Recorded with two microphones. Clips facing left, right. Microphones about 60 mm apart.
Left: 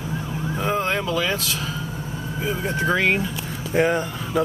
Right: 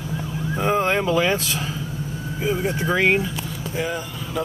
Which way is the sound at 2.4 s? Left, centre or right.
Centre.